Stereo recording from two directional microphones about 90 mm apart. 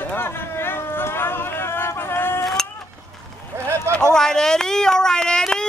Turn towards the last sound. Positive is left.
turn(degrees=10)  # may be behind; listen again after turning